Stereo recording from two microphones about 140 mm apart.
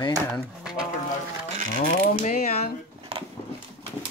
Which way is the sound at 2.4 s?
50° left (ahead or behind).